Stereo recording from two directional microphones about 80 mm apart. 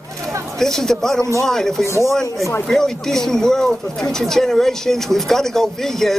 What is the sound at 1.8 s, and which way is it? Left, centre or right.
Speech, left.